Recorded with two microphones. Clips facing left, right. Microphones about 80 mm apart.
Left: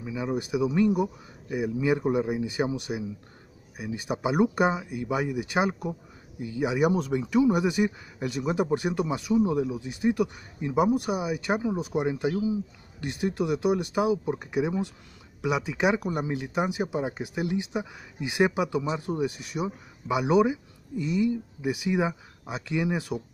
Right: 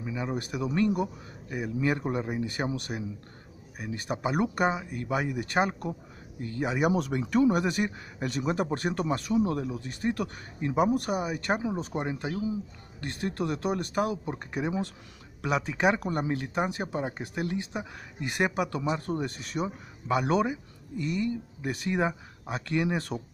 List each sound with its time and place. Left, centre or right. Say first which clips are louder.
0.0 s speech: left 3 dB; centre
18.8 s speech: left 2 dB; centre